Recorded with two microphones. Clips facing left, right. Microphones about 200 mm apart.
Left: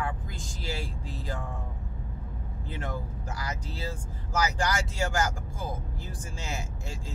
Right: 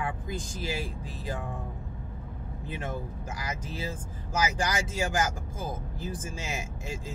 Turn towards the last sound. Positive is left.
turn(degrees=-20)  # may be behind; listen again after turning